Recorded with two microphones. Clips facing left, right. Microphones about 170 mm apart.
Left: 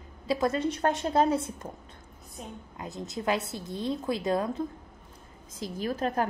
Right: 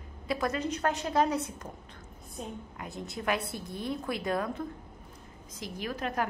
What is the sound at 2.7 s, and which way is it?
A woman's voice, 20° left (ahead or behind).